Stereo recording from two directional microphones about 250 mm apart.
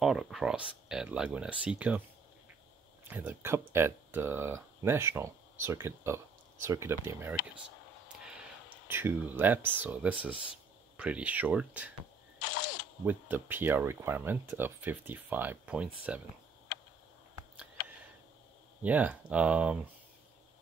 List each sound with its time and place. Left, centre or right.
0.0 s speech: centre
3.1 s speech: centre
8.8 s speech: centre
13.0 s speech: centre
18.8 s speech: centre